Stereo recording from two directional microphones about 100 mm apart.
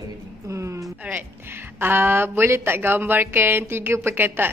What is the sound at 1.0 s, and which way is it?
A woman's voice, 15° right (ahead or behind).